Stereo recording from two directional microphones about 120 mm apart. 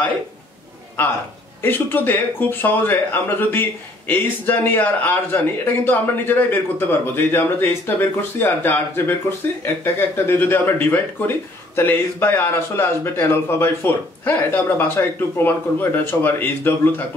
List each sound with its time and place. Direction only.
1.6 s speech: 15° left (ahead or behind)